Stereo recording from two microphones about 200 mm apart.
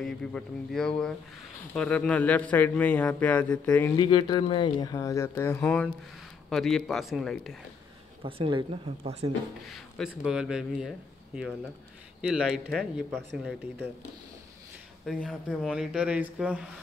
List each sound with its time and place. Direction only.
0.0 s speech: centre (ahead or behind)
3.9 s speech: 20° left (ahead or behind); by 7.5 s centre (ahead or behind)
8.2 s speech: 25° right (ahead or behind)
9.7 s speech: centre (ahead or behind)
15.0 s speech: centre (ahead or behind)